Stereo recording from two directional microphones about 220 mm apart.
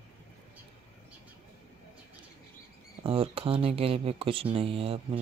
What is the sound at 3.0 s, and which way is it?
Speech, 25° right (ahead or behind).